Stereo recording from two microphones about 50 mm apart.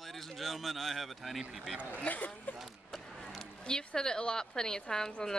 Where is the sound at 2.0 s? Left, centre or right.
Left.